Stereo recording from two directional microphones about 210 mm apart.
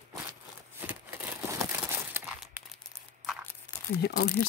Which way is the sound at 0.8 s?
10° right (ahead or behind).